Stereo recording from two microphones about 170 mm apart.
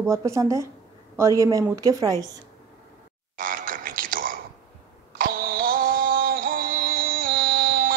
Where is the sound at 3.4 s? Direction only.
55° right (ahead or behind).